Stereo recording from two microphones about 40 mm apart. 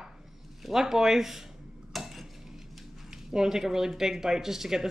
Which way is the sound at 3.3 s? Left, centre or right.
Centre.